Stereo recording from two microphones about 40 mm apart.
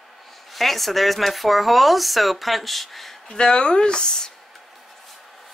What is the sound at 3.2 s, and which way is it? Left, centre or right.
Speech, left.